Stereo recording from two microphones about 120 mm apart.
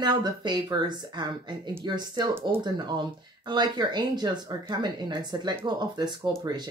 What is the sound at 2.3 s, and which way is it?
Speech, 20° right (ahead or behind).